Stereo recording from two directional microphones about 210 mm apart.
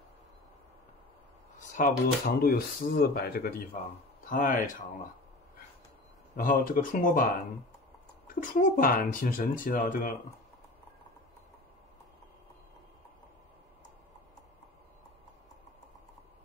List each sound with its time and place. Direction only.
1.6 s speech: 40° left (ahead or behind)
6.3 s speech: 40° left (ahead or behind)
8.3 s speech: 40° left (ahead or behind)